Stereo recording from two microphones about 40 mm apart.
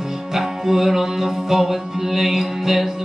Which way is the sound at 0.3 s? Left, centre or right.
Centre.